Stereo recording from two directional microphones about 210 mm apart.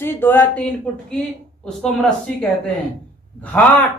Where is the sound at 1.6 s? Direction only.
5° left (ahead or behind).